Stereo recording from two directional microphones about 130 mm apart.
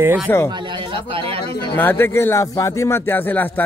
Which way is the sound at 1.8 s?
15° left (ahead or behind).